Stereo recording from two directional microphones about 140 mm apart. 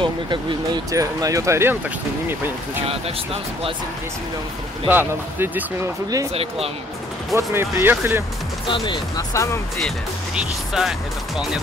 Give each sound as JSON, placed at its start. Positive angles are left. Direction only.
{"t": 0.0, "sound": "speech", "side_deg": -35}
{"t": 4.8, "sound": "speech", "side_deg": -15}
{"t": 7.3, "sound": "speech", "side_deg": -15}
{"t": 8.6, "sound": "speech", "side_deg": 35}
{"t": 9.3, "sound": "speech", "side_deg": 20}
{"t": 10.3, "sound": "speech", "side_deg": -5}